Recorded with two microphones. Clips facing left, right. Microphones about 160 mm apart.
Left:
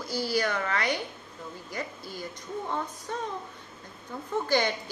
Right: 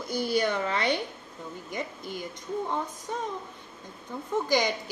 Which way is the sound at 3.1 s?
15° right (ahead or behind).